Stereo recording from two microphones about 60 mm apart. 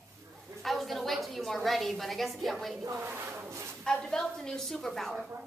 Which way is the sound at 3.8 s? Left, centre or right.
Centre.